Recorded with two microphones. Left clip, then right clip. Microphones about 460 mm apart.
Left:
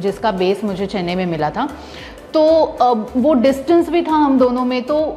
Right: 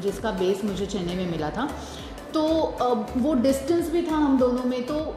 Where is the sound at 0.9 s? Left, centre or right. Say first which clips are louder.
Left 9 dB; left.